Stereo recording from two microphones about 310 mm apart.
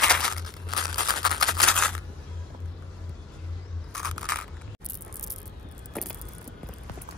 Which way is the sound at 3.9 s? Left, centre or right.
Centre.